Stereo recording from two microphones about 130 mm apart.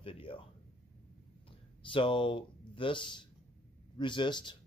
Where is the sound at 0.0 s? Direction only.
45° left (ahead or behind).